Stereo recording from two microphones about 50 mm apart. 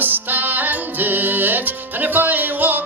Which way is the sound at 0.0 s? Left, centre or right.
Right.